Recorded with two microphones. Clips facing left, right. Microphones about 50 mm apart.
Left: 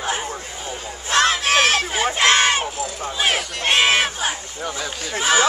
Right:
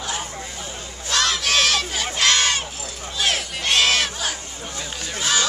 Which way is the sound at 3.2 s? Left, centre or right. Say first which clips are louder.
Left 2 dB; left.